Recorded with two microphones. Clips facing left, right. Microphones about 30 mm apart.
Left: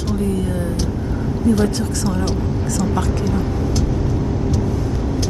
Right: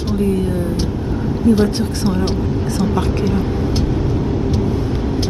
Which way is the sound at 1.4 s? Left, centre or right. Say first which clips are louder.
Right 3 dB; right.